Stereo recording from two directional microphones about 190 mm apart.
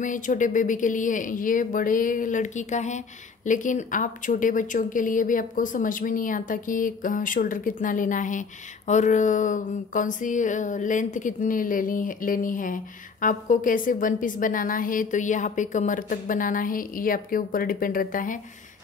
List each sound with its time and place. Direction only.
0.0 s speech: 45° left (ahead or behind)